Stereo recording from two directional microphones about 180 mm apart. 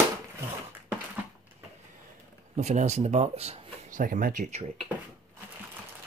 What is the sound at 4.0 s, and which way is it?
Speech, 50° right (ahead or behind).